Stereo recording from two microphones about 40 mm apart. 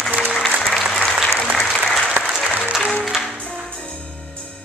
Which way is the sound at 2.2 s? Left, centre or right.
Right.